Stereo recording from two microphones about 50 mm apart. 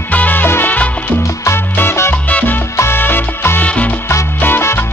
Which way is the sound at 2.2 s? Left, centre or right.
Left.